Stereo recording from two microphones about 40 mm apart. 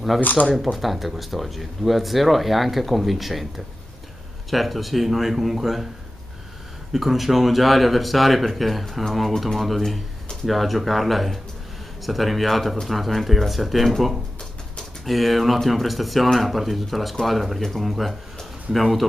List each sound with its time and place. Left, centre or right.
0.2 s speech: left
0.6 s speech: centre
6.9 s speech: centre
18.4 s a sound: centre